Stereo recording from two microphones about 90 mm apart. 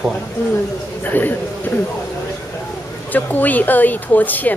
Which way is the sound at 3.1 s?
20° left (ahead or behind).